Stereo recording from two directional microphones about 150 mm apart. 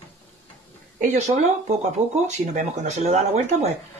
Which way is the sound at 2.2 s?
50° right (ahead or behind).